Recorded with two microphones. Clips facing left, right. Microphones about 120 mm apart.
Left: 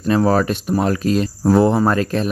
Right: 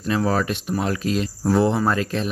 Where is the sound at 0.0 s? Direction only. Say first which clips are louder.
Left 6 dB; 45° left (ahead or behind).